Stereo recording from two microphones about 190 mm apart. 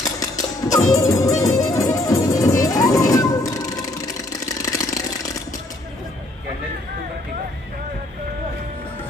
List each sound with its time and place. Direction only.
0.2 s music: 20° left (ahead or behind)
4.3 s engine: 20° left (ahead or behind)